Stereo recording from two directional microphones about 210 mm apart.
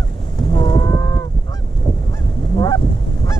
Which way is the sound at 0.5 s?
20° left (ahead or behind).